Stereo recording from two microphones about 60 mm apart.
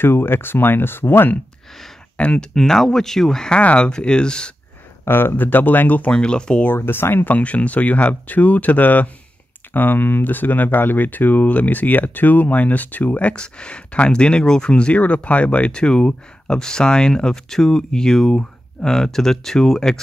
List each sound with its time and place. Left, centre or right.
0.0 s speech: left
2.1 s speech: left
2.5 s speech: centre
5.0 s speech: left
6.1 s speech: centre
6.8 s speech: left
7.2 s speech: left; by 20.0 s centre